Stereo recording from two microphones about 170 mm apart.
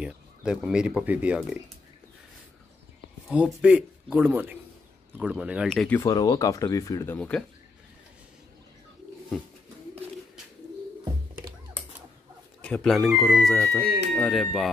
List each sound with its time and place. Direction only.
0.0 s speech: 5° right (ahead or behind)
3.3 s speech: 5° right (ahead or behind)
5.9 s speech: 20° left (ahead or behind)
7.2 s speech: 5° left (ahead or behind)
12.6 s speech: 5° left (ahead or behind)